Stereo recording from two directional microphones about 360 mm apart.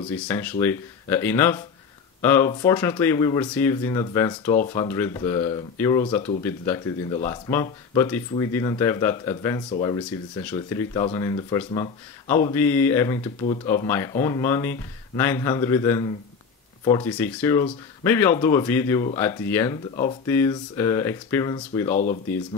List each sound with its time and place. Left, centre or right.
0.3 s speech: centre
21.9 s speech: left